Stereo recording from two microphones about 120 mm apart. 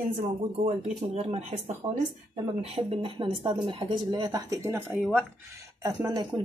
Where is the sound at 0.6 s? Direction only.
60° right (ahead or behind); by 4.8 s 25° right (ahead or behind).